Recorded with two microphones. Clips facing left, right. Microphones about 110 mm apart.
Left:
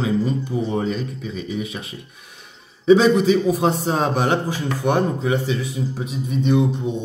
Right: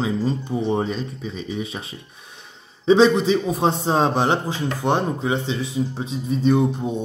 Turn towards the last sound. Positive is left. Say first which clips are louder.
# even
turn(degrees=-35)  # may be behind; listen again after turning